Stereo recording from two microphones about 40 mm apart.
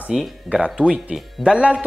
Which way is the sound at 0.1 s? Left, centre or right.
Centre.